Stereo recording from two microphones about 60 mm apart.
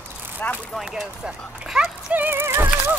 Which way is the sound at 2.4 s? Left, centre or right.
Right.